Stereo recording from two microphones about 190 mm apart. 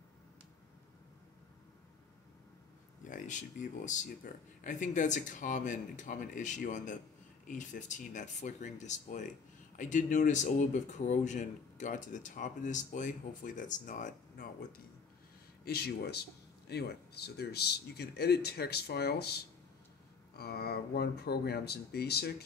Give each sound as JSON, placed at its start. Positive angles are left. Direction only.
{"t": 3.1, "sound": "speech", "side_deg": 40}